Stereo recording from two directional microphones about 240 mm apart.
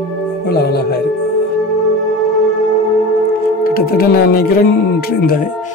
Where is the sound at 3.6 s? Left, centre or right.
Left.